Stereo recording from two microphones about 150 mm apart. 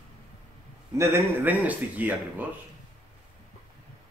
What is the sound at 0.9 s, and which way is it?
A man's voice, 15° right (ahead or behind).